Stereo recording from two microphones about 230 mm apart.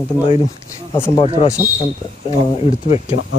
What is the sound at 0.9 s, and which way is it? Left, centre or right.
Speech, centre.